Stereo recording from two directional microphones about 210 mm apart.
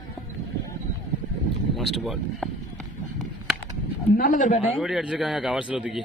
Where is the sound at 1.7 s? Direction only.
Centre (ahead or behind).